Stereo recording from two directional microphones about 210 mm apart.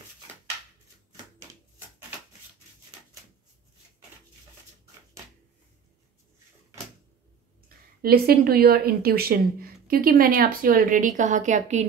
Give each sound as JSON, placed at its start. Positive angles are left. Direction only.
{"t": 7.6, "sound": "speech", "side_deg": -45}